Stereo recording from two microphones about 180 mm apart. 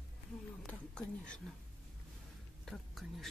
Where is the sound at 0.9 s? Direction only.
5° left (ahead or behind).